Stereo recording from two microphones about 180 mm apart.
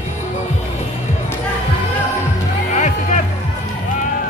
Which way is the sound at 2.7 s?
40° left (ahead or behind).